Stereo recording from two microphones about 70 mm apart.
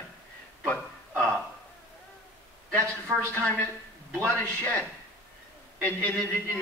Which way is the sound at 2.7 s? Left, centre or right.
Left.